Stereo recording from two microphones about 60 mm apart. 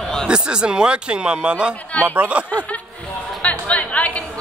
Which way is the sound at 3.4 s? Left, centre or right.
Left.